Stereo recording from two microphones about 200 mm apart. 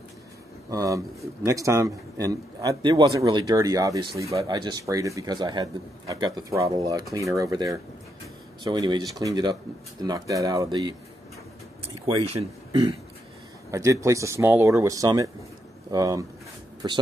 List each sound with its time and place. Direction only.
0.7 s speech: 15° right (ahead or behind)
12.3 s speech: 30° right (ahead or behind)
13.7 s speech: 15° right (ahead or behind)